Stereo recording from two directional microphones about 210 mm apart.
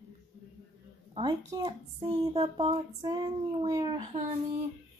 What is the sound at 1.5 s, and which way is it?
Female singing, 20° right (ahead or behind).